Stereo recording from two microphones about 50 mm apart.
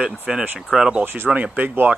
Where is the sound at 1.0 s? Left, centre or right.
Right.